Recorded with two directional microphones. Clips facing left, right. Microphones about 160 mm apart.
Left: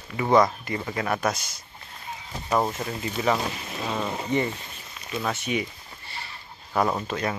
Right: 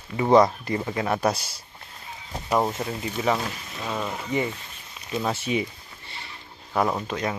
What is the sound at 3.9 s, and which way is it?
Speech, 25° left (ahead or behind).